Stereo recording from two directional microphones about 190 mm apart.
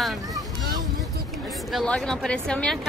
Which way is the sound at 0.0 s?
Centre (ahead or behind).